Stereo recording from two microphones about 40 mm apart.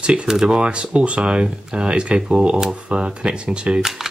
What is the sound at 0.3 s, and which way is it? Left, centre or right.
Speech, centre.